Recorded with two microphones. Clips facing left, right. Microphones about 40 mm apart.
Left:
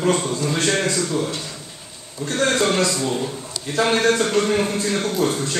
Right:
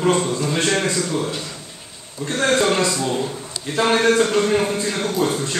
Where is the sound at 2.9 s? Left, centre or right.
Centre.